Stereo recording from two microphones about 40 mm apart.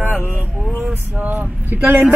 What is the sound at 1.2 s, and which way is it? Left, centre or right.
Speech, right.